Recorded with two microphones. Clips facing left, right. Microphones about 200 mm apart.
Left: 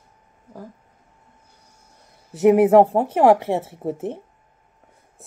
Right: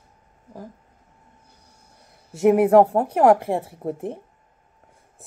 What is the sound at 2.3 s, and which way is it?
Speech, centre (ahead or behind).